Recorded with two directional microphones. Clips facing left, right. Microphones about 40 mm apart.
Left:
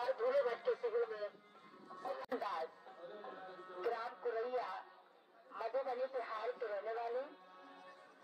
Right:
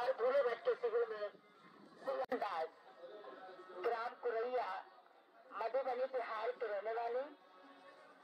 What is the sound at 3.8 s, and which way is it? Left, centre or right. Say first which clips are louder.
Radio: right 1 dB; centre.